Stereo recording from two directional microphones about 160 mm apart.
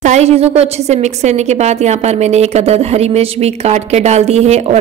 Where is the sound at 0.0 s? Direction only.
45° right (ahead or behind).